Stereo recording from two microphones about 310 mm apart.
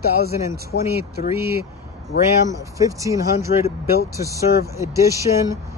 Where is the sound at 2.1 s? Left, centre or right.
Left.